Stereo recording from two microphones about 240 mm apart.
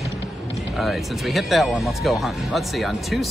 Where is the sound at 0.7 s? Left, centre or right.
Centre.